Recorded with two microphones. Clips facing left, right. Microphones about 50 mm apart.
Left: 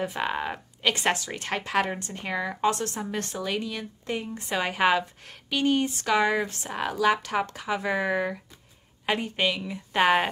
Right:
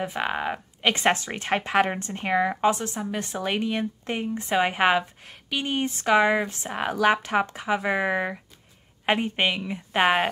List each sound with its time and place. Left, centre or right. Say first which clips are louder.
0.0 s speech: right 1 dB; centre
0.8 s a woman's voice: right 3 dB; right
3.3 s a woman's voice: right 7 dB; right
6.9 s a woman's voice: right 2 dB; right
10.0 s speech: even; centre